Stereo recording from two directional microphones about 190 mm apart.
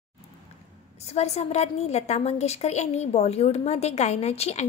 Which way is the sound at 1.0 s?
35° left (ahead or behind).